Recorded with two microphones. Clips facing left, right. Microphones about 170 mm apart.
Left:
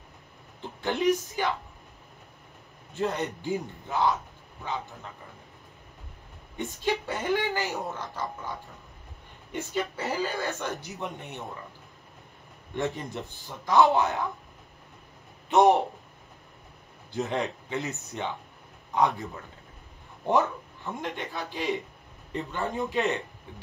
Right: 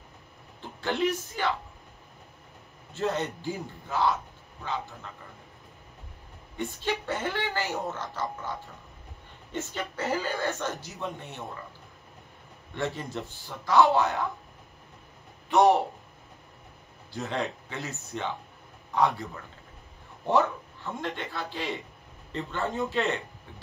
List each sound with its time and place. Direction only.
0.6 s speech: 15° left (ahead or behind)
2.9 s a man's voice: 15° left (ahead or behind)
6.5 s a man's voice: 15° left (ahead or behind)
12.7 s a man's voice: 20° left (ahead or behind)
15.5 s a man's voice: 20° left (ahead or behind)
17.1 s a man's voice: 20° left (ahead or behind)
20.2 s a man's voice: 15° left (ahead or behind)